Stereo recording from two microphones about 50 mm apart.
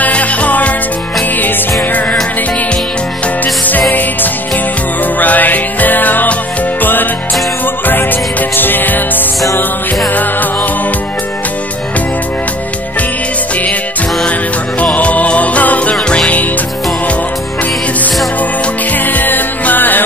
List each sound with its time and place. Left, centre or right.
0.0 s music: left
1.8 s music: left
5.2 s music: left
14.8 s music: left
19.0 s music: left